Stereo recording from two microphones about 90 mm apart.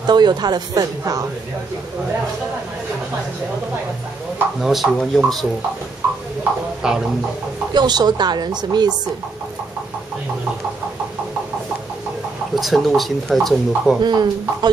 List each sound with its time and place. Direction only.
0.0 s speech: 50° right (ahead or behind)
4.6 s speech: 5° right (ahead or behind)
6.8 s speech: 10° right (ahead or behind)
7.7 s speech: 50° right (ahead or behind)
12.5 s speech: centre (ahead or behind)
14.0 s speech: 55° right (ahead or behind)